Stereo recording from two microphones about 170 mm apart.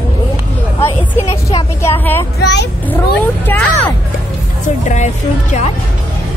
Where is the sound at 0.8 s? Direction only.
35° left (ahead or behind).